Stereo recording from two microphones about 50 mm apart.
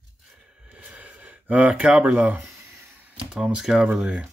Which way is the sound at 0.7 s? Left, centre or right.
Right.